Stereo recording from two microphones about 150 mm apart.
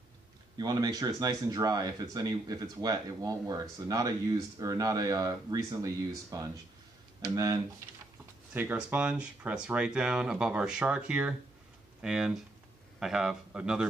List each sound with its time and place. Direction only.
0.6 s speech: 25° right (ahead or behind)
8.5 s a man's voice: 10° right (ahead or behind)